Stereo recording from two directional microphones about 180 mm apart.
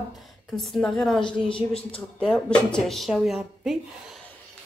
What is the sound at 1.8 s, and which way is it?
Speech, 30° left (ahead or behind).